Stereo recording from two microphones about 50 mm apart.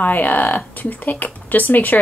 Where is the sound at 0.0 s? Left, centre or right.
Left.